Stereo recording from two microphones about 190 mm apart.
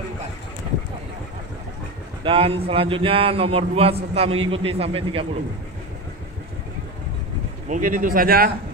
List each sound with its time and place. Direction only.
2.2 s a man's voice: 30° right (ahead or behind)
7.7 s speech: 45° right (ahead or behind)